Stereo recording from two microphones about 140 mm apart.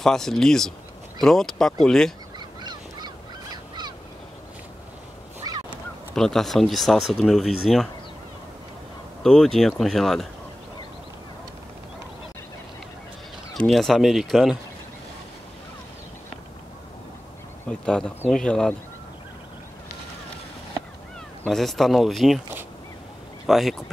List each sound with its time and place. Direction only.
0.0 s speech: 5° left (ahead or behind)
2.3 s fowl: 30° right (ahead or behind)
6.1 s speech: 5° left (ahead or behind)
9.2 s speech: 5° left (ahead or behind)
13.6 s speech: centre (ahead or behind)
17.6 s speech: 5° left (ahead or behind)
21.5 s speech: centre (ahead or behind)
23.4 s speech: centre (ahead or behind)